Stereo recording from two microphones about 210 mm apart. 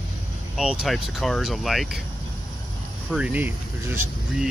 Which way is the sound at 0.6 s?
Centre (ahead or behind).